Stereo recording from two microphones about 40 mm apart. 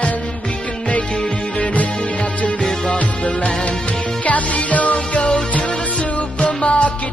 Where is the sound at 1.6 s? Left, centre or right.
Left.